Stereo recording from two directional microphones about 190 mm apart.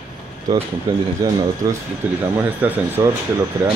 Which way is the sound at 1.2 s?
20° right (ahead or behind).